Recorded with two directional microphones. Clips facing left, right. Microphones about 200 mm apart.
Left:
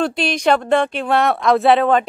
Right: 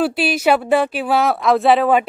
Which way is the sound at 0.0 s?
5° right (ahead or behind).